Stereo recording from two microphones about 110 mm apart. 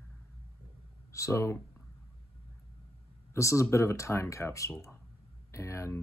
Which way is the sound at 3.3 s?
25° left (ahead or behind).